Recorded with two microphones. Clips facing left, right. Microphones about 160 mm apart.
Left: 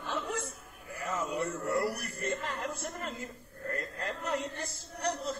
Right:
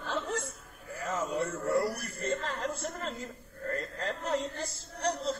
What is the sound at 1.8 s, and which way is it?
Music, 15° left (ahead or behind).